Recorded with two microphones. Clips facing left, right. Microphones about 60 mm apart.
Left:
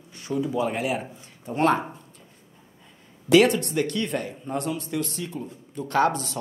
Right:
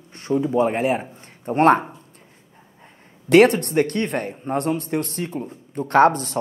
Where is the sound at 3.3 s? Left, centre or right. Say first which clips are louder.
Right 4 dB; right.